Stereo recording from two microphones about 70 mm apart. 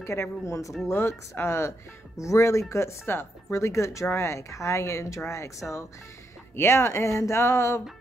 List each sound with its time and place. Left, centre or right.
0.0 s speech: left
0.8 s speech: left